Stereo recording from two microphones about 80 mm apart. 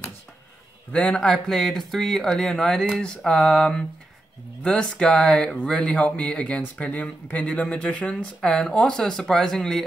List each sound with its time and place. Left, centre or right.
0.9 s speech: centre
1.5 s speech: centre